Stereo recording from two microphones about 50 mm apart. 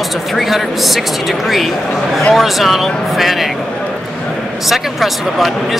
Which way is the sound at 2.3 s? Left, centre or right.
Centre.